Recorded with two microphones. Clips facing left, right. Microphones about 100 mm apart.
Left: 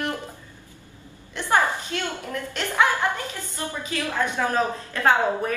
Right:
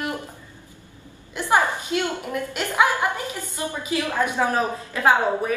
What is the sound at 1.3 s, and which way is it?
A woman's voice, 15° right (ahead or behind).